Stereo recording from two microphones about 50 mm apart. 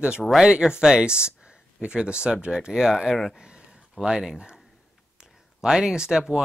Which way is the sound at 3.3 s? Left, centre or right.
Centre.